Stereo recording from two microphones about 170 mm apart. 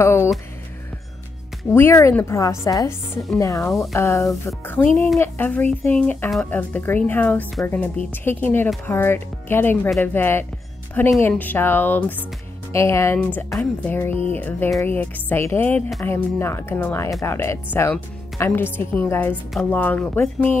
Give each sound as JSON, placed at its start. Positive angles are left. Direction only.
{"t": 0.0, "sound": "a woman's voice", "side_deg": 15}
{"t": 1.7, "sound": "a woman's voice", "side_deg": 15}
{"t": 14.1, "sound": "speech", "side_deg": -35}
{"t": 14.8, "sound": "a woman's voice", "side_deg": 10}